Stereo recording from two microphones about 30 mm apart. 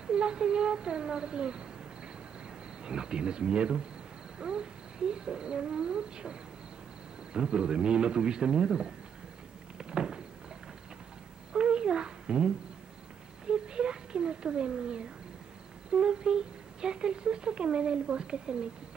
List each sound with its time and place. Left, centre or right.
0.0 s speech: right
2.8 s speech: right
7.3 s speech: right
9.8 s a sound: right
11.5 s a sound: right
15.9 s speech: right